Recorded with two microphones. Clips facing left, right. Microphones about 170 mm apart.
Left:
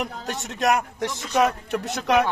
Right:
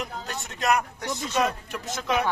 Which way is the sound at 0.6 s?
90° left.